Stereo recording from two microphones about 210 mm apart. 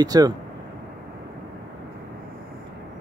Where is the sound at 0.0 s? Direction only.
15° right (ahead or behind).